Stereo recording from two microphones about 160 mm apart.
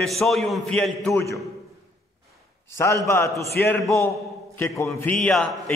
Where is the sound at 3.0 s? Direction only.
20° left (ahead or behind).